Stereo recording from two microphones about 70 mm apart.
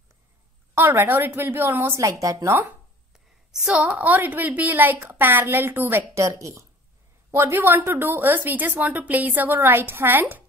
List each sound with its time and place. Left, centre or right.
0.7 s a woman's voice: right
2.0 s speech: right
3.7 s a woman's voice: centre
6.1 s a woman's voice: right